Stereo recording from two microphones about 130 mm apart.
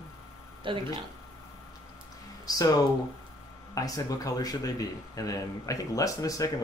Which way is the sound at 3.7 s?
25° left (ahead or behind).